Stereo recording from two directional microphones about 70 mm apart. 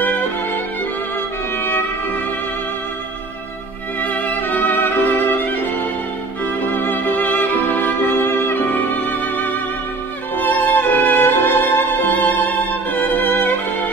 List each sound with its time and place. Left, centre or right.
0.0 s music: left
4.0 s violin: left
6.4 s music: left